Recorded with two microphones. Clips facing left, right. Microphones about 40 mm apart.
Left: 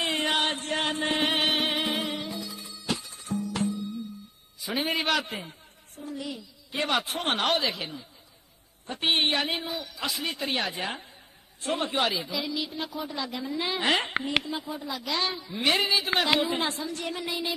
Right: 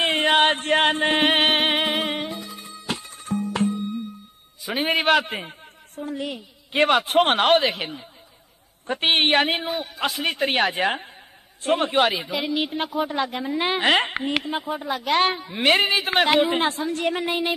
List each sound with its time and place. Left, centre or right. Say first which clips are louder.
0.0 s chant: right 8 dB; right
4.6 s a man's voice: right 5 dB; right